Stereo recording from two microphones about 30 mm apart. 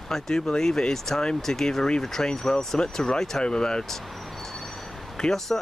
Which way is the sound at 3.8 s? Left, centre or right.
Centre.